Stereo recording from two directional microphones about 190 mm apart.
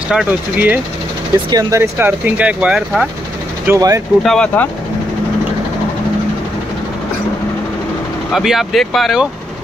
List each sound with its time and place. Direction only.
0.1 s speech: 5° right (ahead or behind)
3.6 s speech: 15° right (ahead or behind)
4.2 s speech: 5° left (ahead or behind)
8.3 s speech: centre (ahead or behind)